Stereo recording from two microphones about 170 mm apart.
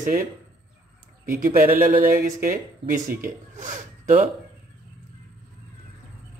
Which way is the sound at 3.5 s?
50° right (ahead or behind).